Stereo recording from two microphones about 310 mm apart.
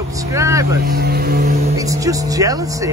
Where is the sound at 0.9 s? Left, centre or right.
Right.